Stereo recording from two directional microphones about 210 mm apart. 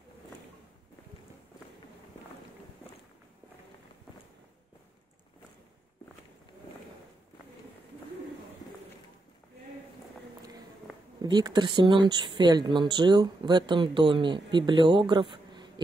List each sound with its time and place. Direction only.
11.2 s speech: 20° right (ahead or behind)